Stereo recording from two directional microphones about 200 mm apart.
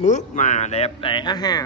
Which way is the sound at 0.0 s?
35° left (ahead or behind).